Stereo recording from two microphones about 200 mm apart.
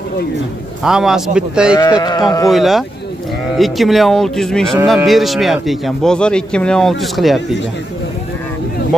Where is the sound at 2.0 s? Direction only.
20° left (ahead or behind).